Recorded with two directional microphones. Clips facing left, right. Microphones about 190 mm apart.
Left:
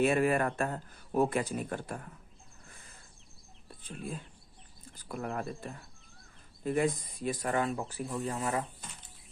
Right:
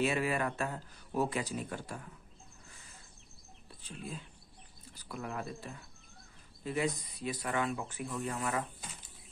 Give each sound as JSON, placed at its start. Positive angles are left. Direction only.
{"t": 0.0, "sound": "speech", "side_deg": 50}
{"t": 3.8, "sound": "speech", "side_deg": 50}